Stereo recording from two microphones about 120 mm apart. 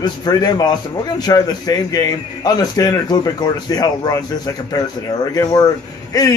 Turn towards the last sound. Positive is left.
turn(degrees=30)  # may be behind; listen again after turning